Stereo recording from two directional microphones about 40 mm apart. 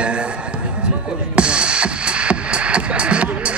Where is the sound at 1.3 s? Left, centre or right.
Right.